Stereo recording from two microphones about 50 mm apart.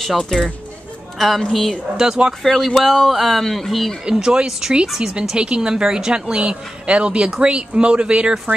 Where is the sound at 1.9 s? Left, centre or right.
Centre.